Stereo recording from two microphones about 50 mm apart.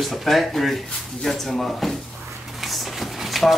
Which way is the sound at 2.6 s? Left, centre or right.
Centre.